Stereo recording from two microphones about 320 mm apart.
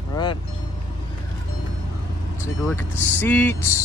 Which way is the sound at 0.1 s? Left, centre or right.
Centre.